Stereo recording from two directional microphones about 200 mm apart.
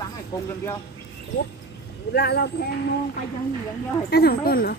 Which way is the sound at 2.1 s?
55° left (ahead or behind).